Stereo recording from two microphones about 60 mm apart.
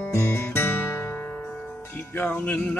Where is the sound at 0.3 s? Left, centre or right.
Left.